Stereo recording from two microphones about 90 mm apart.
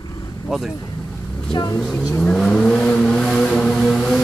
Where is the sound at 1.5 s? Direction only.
45° left (ahead or behind).